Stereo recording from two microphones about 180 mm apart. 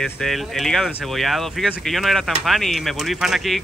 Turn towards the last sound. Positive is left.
turn(degrees=0)  # may be behind; listen again after turning